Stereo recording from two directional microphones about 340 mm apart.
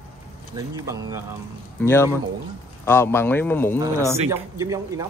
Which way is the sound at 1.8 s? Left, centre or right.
Centre.